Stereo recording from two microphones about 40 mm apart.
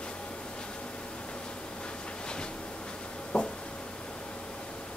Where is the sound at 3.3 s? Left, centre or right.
Left.